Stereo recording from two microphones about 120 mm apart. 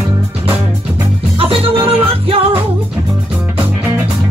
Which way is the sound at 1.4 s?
50° right (ahead or behind).